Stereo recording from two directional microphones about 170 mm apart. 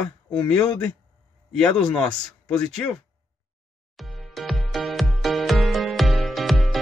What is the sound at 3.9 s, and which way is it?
Music, centre (ahead or behind).